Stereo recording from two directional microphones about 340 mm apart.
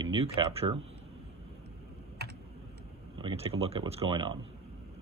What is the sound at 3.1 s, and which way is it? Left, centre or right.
Speech, centre.